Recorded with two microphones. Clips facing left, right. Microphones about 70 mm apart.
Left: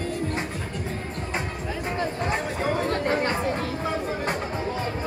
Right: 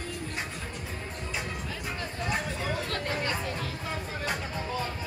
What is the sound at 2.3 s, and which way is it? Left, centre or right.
Chatter, left.